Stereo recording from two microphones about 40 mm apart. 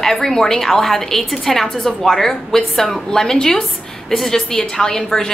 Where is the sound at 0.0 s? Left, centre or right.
Centre.